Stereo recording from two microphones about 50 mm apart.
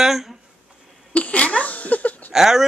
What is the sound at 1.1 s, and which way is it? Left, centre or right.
Speech, left.